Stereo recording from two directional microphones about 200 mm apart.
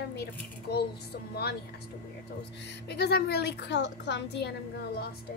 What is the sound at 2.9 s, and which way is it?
A woman's voice, 55° left (ahead or behind).